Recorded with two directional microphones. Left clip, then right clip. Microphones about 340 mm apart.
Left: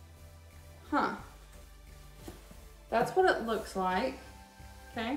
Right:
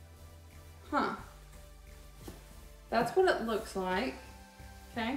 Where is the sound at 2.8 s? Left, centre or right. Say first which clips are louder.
Left 1 dB; centre.